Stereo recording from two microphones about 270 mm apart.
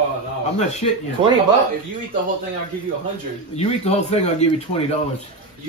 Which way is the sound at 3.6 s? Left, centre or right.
Left.